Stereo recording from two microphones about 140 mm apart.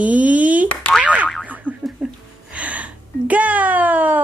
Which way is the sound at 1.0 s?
10° right (ahead or behind).